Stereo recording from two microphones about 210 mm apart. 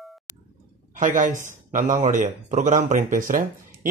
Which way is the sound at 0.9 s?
40° right (ahead or behind).